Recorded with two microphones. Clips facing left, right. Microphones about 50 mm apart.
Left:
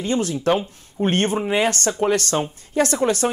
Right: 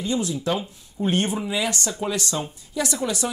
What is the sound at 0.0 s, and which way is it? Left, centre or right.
Speech, left.